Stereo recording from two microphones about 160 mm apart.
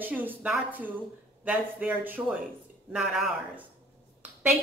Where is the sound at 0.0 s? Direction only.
10° right (ahead or behind).